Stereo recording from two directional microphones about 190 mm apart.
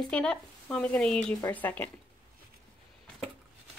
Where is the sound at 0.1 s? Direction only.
5° left (ahead or behind).